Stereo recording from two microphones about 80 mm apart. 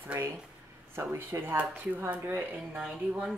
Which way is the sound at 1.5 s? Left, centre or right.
Right.